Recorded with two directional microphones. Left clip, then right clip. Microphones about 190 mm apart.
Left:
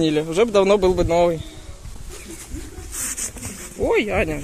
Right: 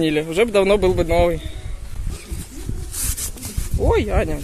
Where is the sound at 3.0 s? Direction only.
70° right (ahead or behind).